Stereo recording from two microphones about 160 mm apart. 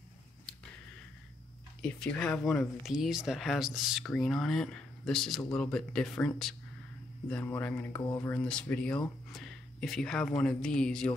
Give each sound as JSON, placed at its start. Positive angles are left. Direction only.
{"t": 1.8, "sound": "speech", "side_deg": 5}